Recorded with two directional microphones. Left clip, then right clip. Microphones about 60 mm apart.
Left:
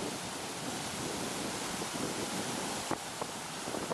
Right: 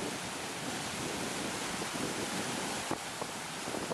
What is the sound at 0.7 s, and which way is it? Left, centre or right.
Wind noise, left.